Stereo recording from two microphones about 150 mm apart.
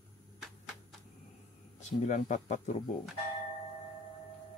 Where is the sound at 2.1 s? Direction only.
55° left (ahead or behind).